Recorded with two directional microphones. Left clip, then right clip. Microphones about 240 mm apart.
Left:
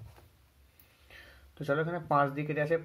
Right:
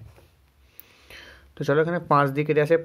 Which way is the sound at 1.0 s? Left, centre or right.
Right.